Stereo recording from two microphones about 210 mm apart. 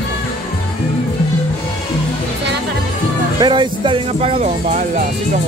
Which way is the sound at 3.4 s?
20° right (ahead or behind).